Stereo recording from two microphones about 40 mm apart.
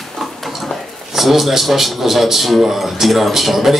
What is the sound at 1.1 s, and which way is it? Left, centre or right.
A man's voice, centre.